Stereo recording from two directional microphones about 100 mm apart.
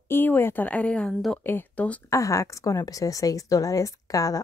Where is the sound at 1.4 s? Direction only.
20° left (ahead or behind).